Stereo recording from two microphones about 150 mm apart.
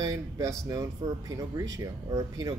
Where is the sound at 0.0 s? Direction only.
20° right (ahead or behind).